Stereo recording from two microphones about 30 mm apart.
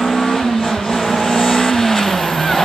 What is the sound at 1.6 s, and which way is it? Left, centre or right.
Vehicle, centre.